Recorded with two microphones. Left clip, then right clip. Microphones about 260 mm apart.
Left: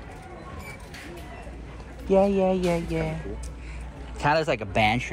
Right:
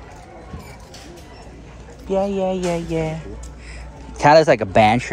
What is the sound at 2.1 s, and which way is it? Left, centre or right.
Speech, centre.